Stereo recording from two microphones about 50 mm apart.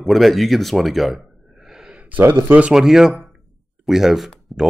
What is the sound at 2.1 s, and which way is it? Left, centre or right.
Speech, right.